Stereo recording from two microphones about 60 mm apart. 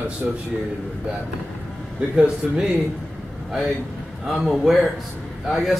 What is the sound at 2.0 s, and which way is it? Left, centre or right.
Speech, centre.